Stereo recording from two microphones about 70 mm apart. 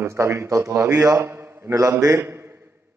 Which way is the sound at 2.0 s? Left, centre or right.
Right.